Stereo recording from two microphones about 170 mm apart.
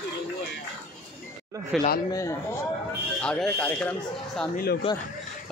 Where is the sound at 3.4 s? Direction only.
10° left (ahead or behind).